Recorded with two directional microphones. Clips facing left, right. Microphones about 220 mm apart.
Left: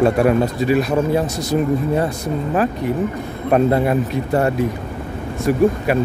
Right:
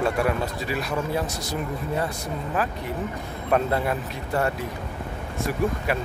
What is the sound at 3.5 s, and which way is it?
Speech, 20° left (ahead or behind).